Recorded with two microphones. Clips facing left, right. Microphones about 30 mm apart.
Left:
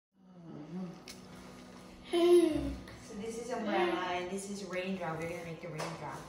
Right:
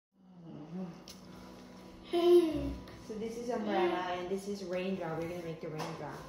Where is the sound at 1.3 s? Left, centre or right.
Left.